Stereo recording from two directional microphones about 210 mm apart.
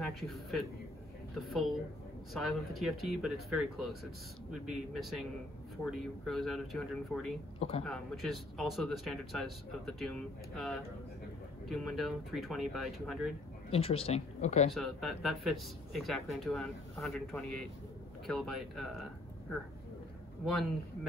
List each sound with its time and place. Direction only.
0.0 s speech: centre (ahead or behind)
7.5 s speech: 30° left (ahead or behind)
7.8 s speech: centre (ahead or behind)
13.7 s speech: 25° left (ahead or behind)
14.7 s speech: centre (ahead or behind)